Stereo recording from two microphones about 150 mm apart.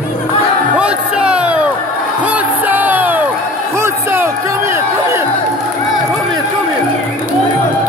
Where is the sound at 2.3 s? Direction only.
10° right (ahead or behind).